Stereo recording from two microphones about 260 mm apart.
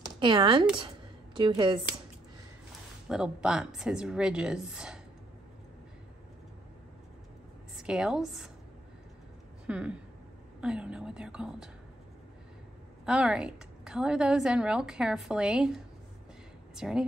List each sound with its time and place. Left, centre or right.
0.2 s speech: centre
0.7 s a sound: centre
3.1 s a woman's voice: centre
7.7 s a woman's voice: centre
9.7 s a woman's voice: centre
13.0 s a woman's voice: centre